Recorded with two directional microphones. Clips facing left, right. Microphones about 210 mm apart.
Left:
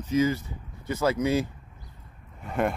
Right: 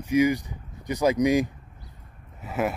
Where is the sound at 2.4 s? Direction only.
5° right (ahead or behind).